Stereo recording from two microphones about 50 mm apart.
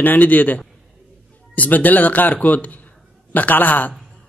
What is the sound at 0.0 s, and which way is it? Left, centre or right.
A man's voice, left.